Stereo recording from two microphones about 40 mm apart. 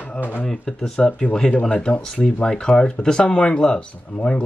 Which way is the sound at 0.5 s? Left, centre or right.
Centre.